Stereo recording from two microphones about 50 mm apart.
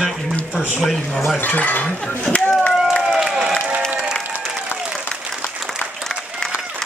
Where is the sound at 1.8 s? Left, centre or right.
Left.